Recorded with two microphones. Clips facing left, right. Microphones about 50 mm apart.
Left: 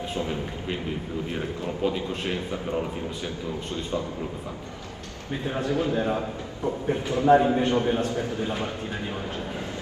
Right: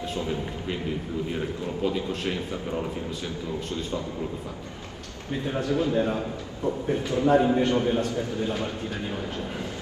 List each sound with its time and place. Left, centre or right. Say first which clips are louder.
1.4 s a man's voice: left 3 dB; centre
5.5 s a man's voice: right 1 dB; left